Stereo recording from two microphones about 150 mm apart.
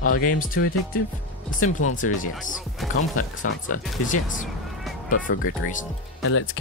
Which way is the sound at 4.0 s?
60° left (ahead or behind).